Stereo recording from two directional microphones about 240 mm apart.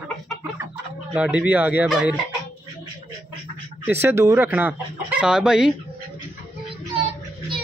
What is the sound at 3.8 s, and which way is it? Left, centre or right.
Speech, centre.